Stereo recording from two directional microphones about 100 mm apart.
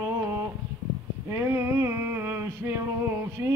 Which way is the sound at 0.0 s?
25° right (ahead or behind).